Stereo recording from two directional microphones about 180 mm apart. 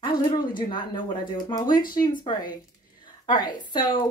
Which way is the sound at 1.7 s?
50° left (ahead or behind).